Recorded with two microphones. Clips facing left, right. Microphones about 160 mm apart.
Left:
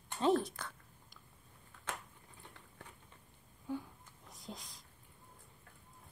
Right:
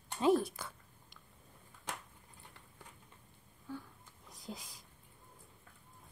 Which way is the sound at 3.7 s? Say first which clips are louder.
Left 5 dB; 15° left (ahead or behind).